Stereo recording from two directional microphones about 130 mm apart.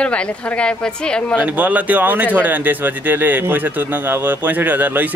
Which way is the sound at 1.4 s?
10° right (ahead or behind).